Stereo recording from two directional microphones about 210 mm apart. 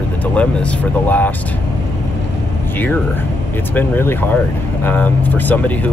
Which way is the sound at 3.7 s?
10° left (ahead or behind).